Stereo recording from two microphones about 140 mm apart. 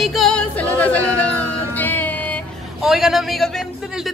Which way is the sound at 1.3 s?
10° left (ahead or behind).